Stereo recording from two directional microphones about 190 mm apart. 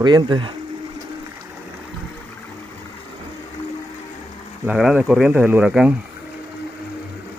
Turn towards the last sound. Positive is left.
turn(degrees=-5)  # may be behind; listen again after turning